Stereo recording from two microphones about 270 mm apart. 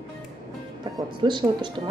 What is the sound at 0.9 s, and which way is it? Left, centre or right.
Speech, centre.